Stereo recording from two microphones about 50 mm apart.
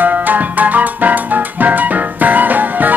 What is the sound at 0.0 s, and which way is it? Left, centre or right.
Music, right.